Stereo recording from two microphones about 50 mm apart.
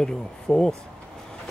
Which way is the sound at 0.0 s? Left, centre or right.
Centre.